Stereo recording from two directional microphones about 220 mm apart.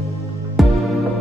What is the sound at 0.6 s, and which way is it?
Music, centre (ahead or behind).